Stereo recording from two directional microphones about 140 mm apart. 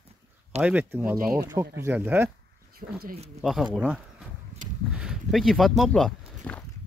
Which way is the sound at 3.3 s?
Centre (ahead or behind).